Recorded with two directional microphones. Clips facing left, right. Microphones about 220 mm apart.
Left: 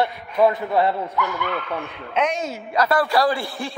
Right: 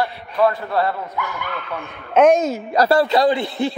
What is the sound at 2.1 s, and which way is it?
Speech, 45° right (ahead or behind).